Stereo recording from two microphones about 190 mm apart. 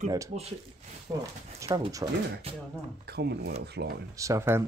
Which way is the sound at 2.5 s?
30° right (ahead or behind).